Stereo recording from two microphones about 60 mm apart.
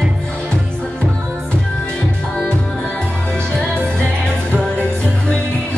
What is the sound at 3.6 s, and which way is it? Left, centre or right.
Music, centre.